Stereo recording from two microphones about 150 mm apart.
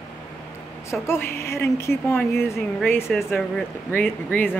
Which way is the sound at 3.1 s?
Centre (ahead or behind).